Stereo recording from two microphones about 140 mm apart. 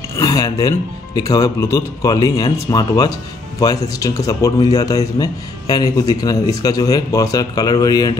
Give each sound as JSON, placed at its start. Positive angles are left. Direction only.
{"t": 0.1, "sound": "speech", "side_deg": 25}